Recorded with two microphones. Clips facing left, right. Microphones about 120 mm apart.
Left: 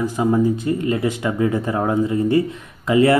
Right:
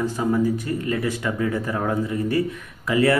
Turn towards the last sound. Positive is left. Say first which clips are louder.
# left 4 dB
turn(degrees=20)  # may be behind; listen again after turning